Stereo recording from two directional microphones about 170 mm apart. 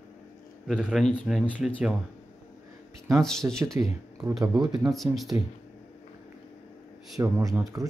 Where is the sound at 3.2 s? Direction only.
5° left (ahead or behind).